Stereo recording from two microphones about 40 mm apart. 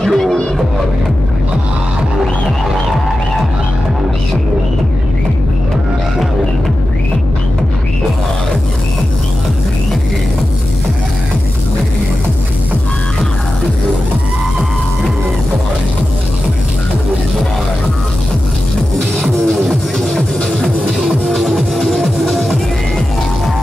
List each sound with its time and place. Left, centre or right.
0.0 s music: centre
20.5 s music: centre
21.3 s music: centre